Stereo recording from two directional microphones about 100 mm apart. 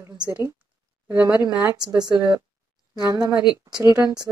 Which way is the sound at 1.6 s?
40° right (ahead or behind).